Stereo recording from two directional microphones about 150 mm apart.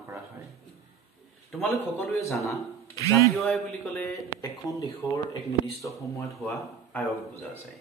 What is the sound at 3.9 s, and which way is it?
Speech, 20° left (ahead or behind).